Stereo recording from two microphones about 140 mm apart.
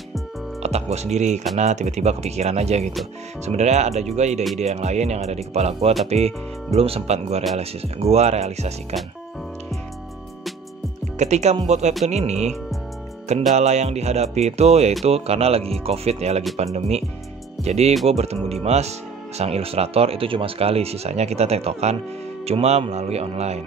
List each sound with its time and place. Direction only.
0.6 s speech: 50° right (ahead or behind)
11.1 s speech: 55° right (ahead or behind)